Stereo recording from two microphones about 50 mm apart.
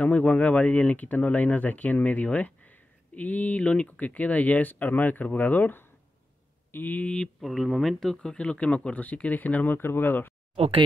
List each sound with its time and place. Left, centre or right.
0.0 s speech: left
7.3 s speech: centre
8.4 s speech: left
9.8 s speech: left